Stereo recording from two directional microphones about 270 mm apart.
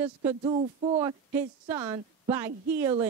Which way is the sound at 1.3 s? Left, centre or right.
Centre.